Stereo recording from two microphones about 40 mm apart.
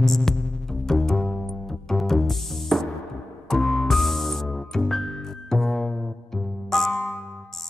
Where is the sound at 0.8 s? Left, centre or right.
Centre.